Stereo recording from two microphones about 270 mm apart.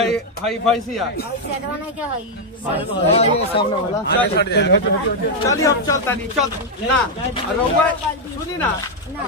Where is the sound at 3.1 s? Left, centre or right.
Left.